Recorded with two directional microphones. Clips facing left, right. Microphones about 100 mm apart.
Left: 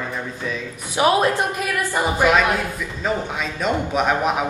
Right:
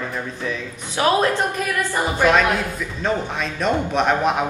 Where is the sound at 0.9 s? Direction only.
15° left (ahead or behind).